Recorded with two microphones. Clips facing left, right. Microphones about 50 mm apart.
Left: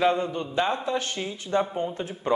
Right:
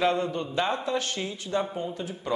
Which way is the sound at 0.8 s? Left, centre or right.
Left.